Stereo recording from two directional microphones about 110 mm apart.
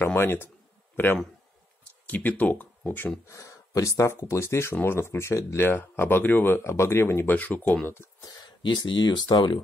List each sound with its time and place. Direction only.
0.0 s a man's voice: 20° left (ahead or behind)
3.3 s speech: 30° left (ahead or behind)
8.2 s speech: 35° left (ahead or behind)